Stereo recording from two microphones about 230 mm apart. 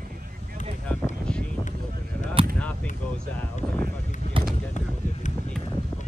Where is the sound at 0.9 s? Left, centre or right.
Centre.